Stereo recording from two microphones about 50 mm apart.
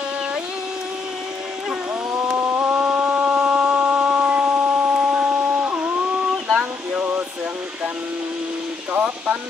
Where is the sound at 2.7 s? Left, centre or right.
Right.